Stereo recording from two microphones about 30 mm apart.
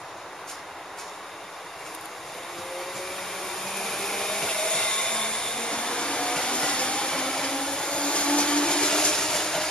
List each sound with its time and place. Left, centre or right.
2.9 s vacuum cleaner: centre; by 7.1 s left
7.1 s a sound: left
7.9 s blender: left; by 9.7 s centre